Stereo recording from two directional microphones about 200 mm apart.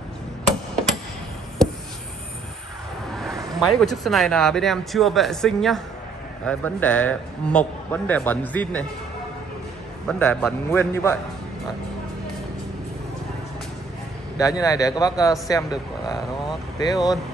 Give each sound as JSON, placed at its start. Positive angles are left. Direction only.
{"t": 3.2, "sound": "a man's voice", "side_deg": 0}
{"t": 10.0, "sound": "a man's voice", "side_deg": 5}
{"t": 14.6, "sound": "a man's voice", "side_deg": 15}